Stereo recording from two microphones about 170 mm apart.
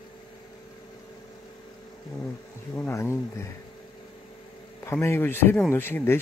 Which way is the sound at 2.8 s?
15° left (ahead or behind).